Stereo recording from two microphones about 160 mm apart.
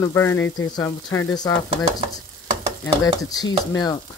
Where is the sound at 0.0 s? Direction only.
20° left (ahead or behind).